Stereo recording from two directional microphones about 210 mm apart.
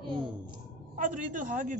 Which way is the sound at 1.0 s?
40° right (ahead or behind).